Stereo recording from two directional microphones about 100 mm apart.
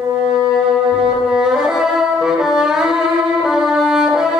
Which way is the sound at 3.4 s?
5° right (ahead or behind).